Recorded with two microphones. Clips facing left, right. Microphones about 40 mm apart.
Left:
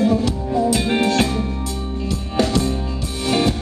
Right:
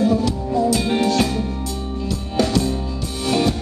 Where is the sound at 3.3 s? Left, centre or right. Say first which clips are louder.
Even; left.